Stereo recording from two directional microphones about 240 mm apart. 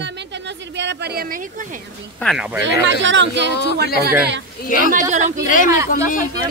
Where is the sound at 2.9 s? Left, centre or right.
Right.